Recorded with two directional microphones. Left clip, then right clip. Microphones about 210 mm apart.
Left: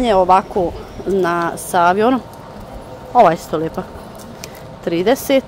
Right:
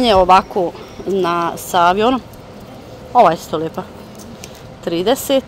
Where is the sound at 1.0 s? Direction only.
10° left (ahead or behind).